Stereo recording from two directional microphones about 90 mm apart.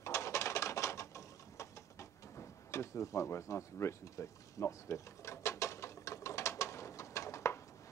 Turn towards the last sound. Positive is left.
turn(degrees=35)  # may be behind; listen again after turning